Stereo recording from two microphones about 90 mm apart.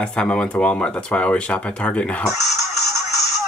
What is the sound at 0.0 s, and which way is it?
Speech, 10° left (ahead or behind).